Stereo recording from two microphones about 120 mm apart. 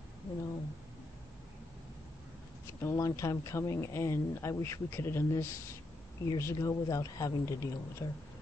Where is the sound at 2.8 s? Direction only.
25° left (ahead or behind).